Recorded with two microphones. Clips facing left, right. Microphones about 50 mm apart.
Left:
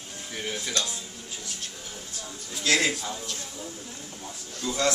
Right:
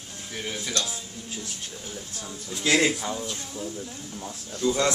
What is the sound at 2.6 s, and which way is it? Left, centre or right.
Speech, right.